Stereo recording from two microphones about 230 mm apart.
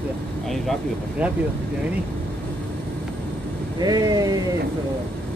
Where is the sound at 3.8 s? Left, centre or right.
Centre.